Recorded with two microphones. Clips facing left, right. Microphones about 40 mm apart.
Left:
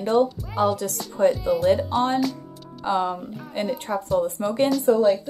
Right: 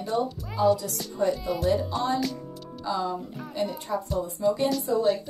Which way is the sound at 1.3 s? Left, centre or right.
Centre.